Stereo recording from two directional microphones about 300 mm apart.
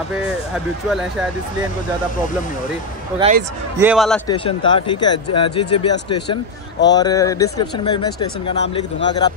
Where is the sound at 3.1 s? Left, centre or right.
Right.